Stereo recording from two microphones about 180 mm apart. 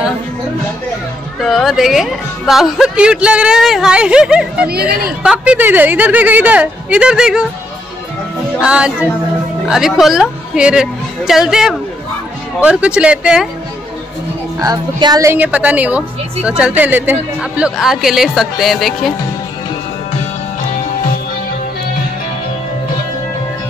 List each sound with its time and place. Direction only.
1.4 s speech: centre (ahead or behind)
4.6 s a woman's voice: 60° right (ahead or behind)
5.2 s speech: 5° right (ahead or behind)
8.5 s speech: 5° right (ahead or behind)
14.6 s speech: 20° right (ahead or behind); by 19.1 s centre (ahead or behind)